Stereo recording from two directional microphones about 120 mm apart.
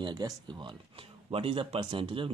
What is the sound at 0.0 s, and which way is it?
Speech, 35° right (ahead or behind).